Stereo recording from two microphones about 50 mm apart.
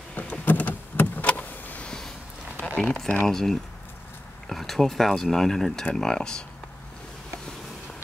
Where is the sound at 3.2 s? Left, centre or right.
Centre.